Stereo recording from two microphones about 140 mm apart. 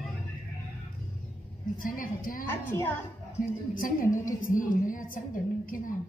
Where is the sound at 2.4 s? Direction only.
15° left (ahead or behind).